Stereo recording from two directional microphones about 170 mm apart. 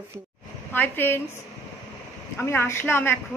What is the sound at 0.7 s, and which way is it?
Speech, 10° left (ahead or behind).